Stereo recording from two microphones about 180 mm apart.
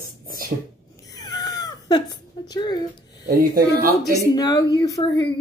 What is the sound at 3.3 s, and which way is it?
Speech, 55° right (ahead or behind).